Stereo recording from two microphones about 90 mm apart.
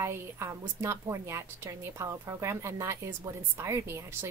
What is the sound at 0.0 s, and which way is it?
A woman's voice, 30° right (ahead or behind).